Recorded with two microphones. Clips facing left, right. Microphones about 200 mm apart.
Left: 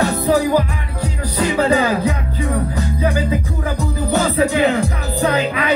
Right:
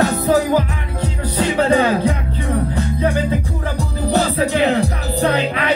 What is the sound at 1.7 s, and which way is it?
Music, 30° right (ahead or behind).